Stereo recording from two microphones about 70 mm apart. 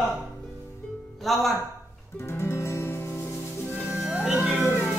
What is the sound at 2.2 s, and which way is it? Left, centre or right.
Music, left.